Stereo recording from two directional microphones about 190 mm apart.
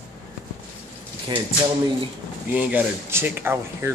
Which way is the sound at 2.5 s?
10° right (ahead or behind).